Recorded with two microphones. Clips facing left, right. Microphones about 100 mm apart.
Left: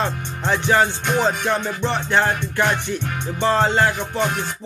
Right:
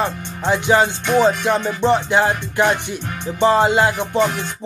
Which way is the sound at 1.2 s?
15° right (ahead or behind).